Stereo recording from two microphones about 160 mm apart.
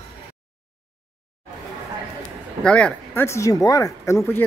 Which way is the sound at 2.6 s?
5° left (ahead or behind).